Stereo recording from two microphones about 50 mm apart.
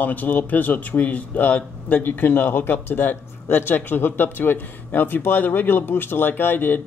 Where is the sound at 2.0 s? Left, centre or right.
Left.